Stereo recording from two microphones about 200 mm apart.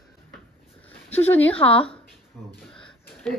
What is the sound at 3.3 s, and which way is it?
Speech, 5° left (ahead or behind).